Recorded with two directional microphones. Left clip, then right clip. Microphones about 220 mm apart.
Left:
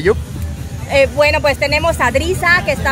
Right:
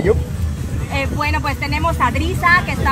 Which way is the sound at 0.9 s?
55° left (ahead or behind).